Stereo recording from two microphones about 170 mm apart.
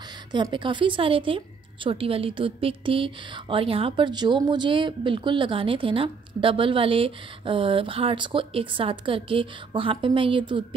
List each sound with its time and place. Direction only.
0.3 s a woman's voice: 25° right (ahead or behind)